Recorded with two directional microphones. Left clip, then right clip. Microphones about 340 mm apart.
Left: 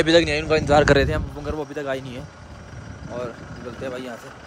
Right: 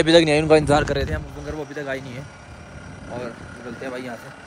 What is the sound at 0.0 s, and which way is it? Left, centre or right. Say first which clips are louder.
Speech: right 2 dB; centre.